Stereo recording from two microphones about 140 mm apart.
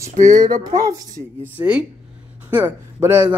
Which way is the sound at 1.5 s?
10° right (ahead or behind).